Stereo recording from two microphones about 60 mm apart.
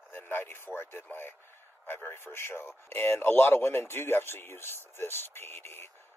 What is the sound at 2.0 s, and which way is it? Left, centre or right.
A man's voice, left.